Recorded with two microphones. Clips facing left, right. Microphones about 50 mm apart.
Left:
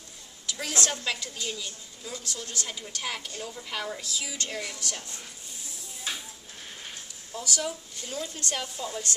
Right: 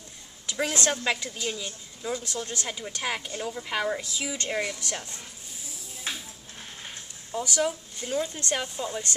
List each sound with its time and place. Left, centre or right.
0.5 s a woman's voice: right
7.3 s a woman's voice: right